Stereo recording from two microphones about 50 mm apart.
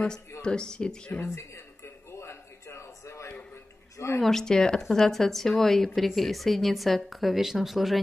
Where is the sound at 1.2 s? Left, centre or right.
Left.